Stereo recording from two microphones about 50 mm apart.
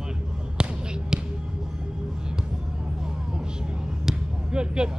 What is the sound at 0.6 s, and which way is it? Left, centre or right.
Basketball bounce, centre.